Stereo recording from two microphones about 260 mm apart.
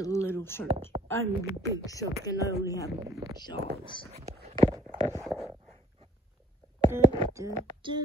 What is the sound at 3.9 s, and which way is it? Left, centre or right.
Speech, centre.